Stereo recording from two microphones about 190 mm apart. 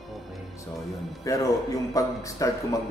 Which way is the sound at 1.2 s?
20° left (ahead or behind).